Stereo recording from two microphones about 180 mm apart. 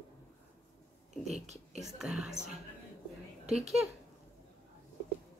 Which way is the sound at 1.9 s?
5° right (ahead or behind).